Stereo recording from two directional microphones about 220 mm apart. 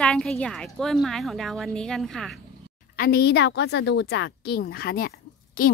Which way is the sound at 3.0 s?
45° left (ahead or behind).